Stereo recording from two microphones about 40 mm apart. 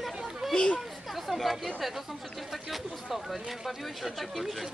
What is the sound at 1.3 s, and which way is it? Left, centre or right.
Chatter, centre.